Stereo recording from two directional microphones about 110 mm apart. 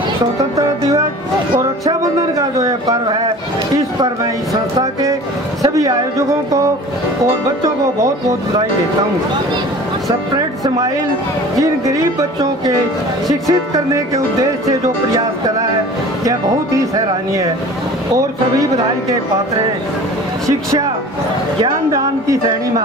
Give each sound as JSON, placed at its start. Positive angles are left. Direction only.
{"t": 0.4, "sound": "speech", "side_deg": -30}
{"t": 1.9, "sound": "music", "side_deg": -30}
{"t": 3.7, "sound": "speech", "side_deg": -30}
{"t": 5.6, "sound": "speech", "side_deg": -30}
{"t": 11.6, "sound": "speech", "side_deg": -30}
{"t": 20.4, "sound": "speech", "side_deg": -30}
{"t": 21.9, "sound": "speech", "side_deg": -30}